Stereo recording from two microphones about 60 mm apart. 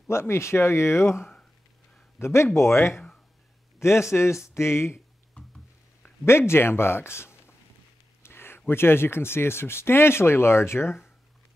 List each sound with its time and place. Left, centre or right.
0.1 s speech: left
6.2 s speech: left